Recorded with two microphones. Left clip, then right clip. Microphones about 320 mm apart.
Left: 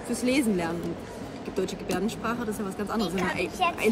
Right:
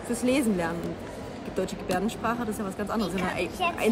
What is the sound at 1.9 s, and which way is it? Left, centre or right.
Speech, centre.